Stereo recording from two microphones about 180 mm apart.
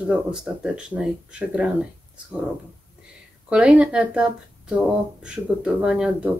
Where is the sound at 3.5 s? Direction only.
5° right (ahead or behind).